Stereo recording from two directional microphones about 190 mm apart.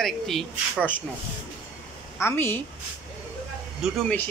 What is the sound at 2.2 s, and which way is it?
Speech, 15° left (ahead or behind).